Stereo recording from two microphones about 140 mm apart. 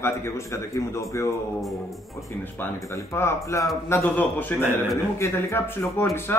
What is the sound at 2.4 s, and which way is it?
A man's voice, 15° left (ahead or behind).